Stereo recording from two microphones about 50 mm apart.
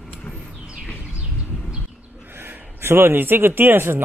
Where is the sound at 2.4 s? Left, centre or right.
Right.